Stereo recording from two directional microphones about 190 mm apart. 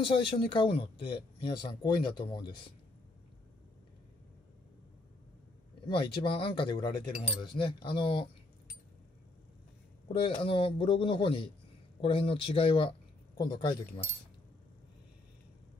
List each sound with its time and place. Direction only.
0.0 s speech: 25° left (ahead or behind)
5.9 s speech: 25° left (ahead or behind)
10.0 s speech: 30° left (ahead or behind)